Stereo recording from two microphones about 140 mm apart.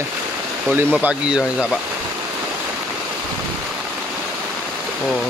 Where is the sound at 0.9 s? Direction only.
5° right (ahead or behind).